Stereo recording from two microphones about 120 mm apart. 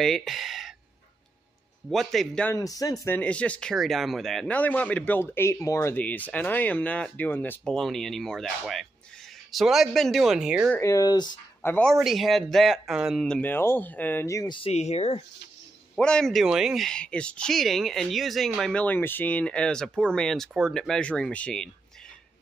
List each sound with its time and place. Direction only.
0.0 s speech: centre (ahead or behind)
1.9 s speech: centre (ahead or behind)
2.5 s speech: 30° left (ahead or behind)
3.1 s speech: 10° left (ahead or behind)
7.7 s speech: 5° left (ahead or behind)
10.8 s speech: 30° left (ahead or behind)
11.8 s speech: centre (ahead or behind)
13.4 s speech: 20° left (ahead or behind)
14.7 s speech: 65° left (ahead or behind)
16.0 s speech: 5° left (ahead or behind)